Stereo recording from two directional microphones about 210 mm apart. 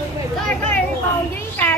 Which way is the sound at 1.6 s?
10° left (ahead or behind).